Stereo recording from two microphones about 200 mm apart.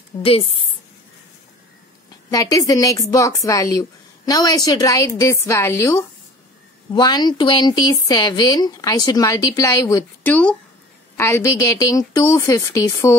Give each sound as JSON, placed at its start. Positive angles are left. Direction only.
{"t": 0.2, "sound": "speech", "side_deg": 25}
{"t": 2.3, "sound": "speech", "side_deg": 15}